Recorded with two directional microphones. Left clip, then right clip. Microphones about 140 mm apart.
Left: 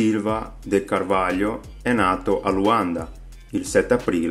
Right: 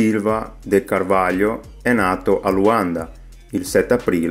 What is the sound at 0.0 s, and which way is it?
Speech, 25° right (ahead or behind).